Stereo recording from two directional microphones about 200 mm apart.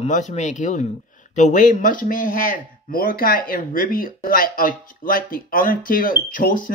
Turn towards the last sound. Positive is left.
turn(degrees=45)  # may be behind; listen again after turning